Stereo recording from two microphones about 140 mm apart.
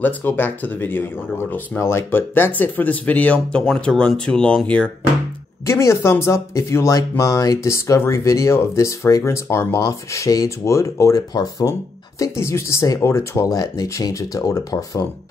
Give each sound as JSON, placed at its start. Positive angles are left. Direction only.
{"t": 0.0, "sound": "speech", "side_deg": 15}
{"t": 5.7, "sound": "speech", "side_deg": 20}